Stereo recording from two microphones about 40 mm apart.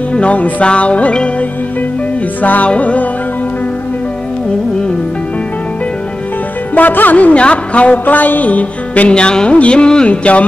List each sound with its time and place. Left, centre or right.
0.1 s music: left
0.7 s speech: left
2.4 s a woman's voice: left
2.7 s music: left
6.7 s a woman's voice: left
8.0 s a woman's voice: left
9.1 s music: left